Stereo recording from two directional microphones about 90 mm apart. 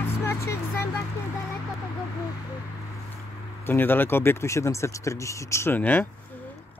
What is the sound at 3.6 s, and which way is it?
Speech, 25° left (ahead or behind).